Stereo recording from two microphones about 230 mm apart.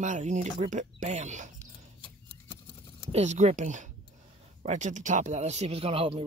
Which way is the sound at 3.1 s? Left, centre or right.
Right.